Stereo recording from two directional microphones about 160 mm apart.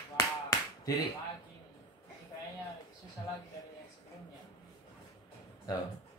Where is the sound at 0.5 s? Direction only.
25° left (ahead or behind).